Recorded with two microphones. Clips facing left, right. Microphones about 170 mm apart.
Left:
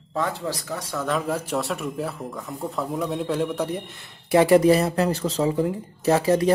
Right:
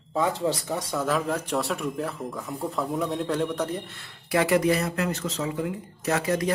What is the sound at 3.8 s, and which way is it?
Speech, 15° left (ahead or behind).